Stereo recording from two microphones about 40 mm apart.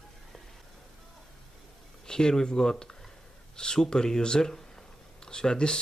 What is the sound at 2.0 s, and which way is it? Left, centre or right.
Speech, centre.